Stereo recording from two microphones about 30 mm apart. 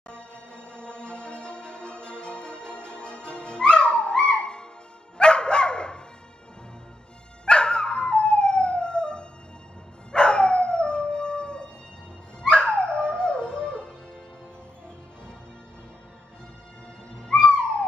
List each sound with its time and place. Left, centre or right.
0.7 s music: left
5.1 s dog: left
7.4 s dog: left
10.1 s howl: left
12.4 s music: left
17.3 s a sound: left